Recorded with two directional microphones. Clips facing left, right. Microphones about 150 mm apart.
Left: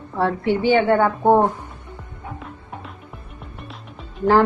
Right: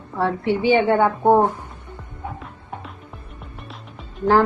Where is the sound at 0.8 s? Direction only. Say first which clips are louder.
Even; 15° right (ahead or behind).